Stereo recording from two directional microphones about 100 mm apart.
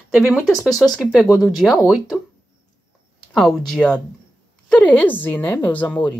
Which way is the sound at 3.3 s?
5° left (ahead or behind).